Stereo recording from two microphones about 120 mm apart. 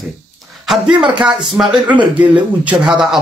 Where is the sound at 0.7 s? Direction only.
10° right (ahead or behind).